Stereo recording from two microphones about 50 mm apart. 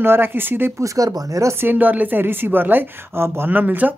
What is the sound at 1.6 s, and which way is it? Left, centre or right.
Speech, right.